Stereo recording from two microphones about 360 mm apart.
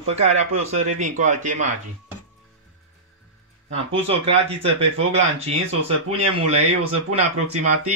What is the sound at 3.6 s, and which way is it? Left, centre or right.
Speech, centre.